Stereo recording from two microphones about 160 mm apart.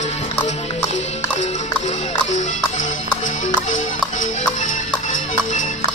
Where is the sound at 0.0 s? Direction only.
45° left (ahead or behind).